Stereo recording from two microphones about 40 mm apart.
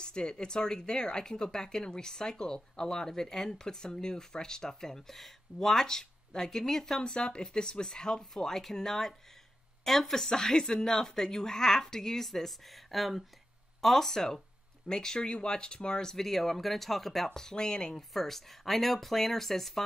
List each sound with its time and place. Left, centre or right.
0.0 s speech: left
7.0 s speech: left
18.1 s speech: centre